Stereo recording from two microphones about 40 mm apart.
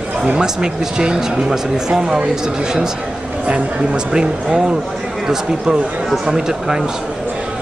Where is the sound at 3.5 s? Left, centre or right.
Right.